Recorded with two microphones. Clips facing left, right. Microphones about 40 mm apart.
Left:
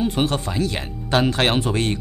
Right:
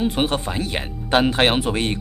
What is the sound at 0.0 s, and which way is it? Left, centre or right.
Speech, centre.